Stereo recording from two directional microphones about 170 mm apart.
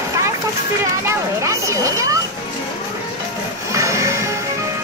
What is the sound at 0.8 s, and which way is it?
Children playing, 15° right (ahead or behind).